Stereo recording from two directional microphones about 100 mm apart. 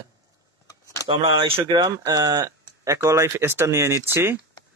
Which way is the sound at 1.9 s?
40° right (ahead or behind).